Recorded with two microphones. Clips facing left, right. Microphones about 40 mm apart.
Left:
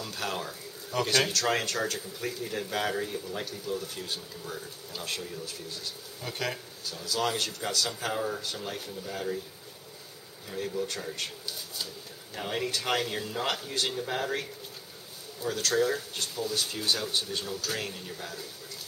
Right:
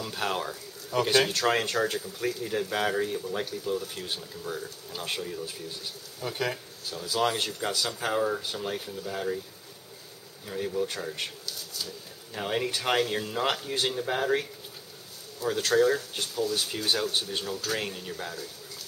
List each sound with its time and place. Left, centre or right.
0.0 s speech: centre
6.2 s speech: centre
10.5 s speech: centre
12.4 s speech: centre